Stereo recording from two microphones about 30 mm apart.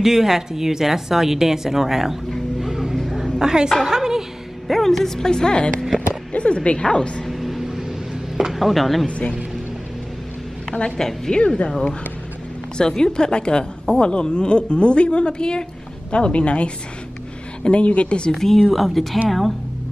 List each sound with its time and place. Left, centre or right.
0.0 s speech: centre
2.6 s a sound: centre
4.6 s speech: centre; by 5.6 s left
6.3 s speech: left
6.9 s a woman's voice: left
7.2 s vehicle: centre
8.5 s speech: centre
11.0 s speech: centre
11.4 s speech: left
12.7 s a woman's voice: left
18.3 s speech: centre
18.7 s speech: centre